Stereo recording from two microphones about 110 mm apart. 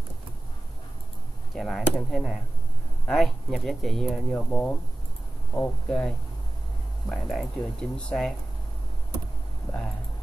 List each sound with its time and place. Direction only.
1.5 s speech: centre (ahead or behind)
4.5 s speech: 15° left (ahead or behind)